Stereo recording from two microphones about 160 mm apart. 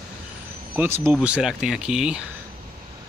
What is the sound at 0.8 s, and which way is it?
Speech, 10° right (ahead or behind).